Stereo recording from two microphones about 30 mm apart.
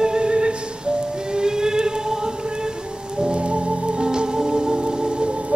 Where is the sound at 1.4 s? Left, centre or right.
Right.